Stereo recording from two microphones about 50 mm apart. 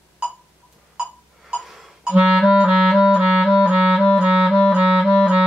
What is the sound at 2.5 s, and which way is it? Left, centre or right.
Music, centre.